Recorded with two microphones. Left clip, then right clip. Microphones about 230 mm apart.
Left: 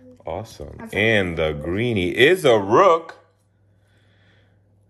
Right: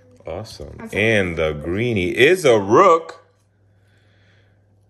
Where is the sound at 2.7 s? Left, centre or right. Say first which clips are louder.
Right 2 dB; right.